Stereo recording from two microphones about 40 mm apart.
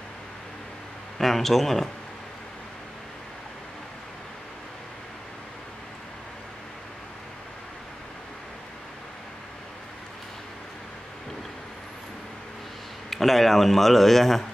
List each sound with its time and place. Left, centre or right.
1.1 s a man's voice: centre
13.1 s a man's voice: centre